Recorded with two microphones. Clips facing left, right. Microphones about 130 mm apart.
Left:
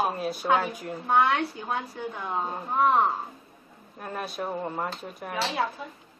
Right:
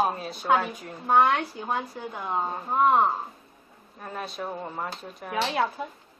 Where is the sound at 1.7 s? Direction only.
30° right (ahead or behind).